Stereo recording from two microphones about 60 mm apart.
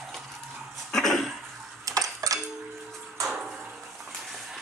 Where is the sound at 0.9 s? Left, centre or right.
Centre.